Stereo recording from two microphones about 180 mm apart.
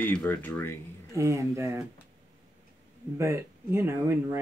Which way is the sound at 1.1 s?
15° right (ahead or behind).